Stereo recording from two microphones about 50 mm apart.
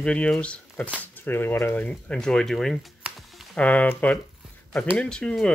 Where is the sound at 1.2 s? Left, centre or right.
Left.